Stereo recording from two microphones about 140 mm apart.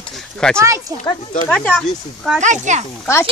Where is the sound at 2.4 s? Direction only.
60° right (ahead or behind).